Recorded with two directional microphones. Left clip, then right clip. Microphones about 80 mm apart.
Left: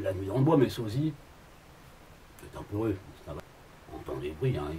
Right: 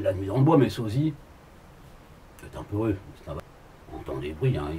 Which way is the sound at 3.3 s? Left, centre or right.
Centre.